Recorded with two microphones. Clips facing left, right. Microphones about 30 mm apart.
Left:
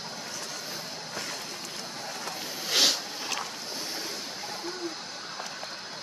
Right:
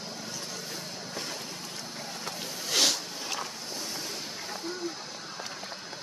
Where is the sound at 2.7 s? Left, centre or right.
Centre.